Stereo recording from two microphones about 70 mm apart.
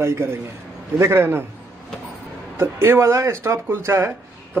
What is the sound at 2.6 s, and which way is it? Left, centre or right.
A man's voice, right.